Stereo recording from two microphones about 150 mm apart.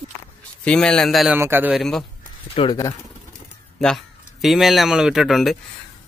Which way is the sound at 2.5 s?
35° left (ahead or behind).